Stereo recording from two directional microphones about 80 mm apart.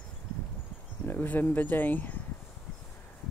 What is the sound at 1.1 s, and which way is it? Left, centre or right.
Speech, left.